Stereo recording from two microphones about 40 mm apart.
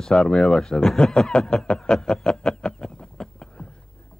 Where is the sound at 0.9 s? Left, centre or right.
Centre.